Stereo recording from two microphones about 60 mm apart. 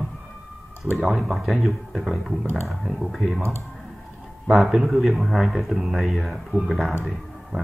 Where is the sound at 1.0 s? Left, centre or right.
Centre.